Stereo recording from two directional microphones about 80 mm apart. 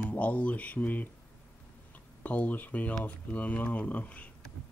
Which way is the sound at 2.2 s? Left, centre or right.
Centre.